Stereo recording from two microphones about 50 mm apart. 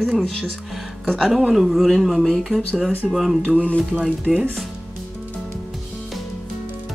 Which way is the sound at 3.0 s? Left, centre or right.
Centre.